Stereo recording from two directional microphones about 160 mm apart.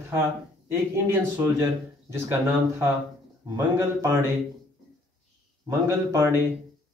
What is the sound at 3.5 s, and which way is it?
Speech, 15° right (ahead or behind).